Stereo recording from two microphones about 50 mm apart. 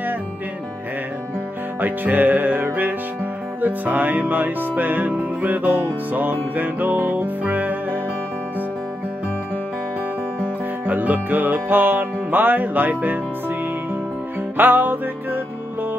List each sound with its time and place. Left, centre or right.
1.8 s music: right
10.9 s music: right
14.6 s music: right